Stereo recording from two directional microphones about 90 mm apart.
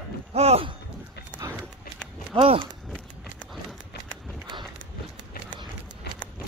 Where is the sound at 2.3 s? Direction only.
60° right (ahead or behind).